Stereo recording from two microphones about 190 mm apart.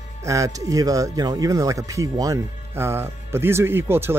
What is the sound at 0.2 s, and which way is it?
Speech, 15° right (ahead or behind).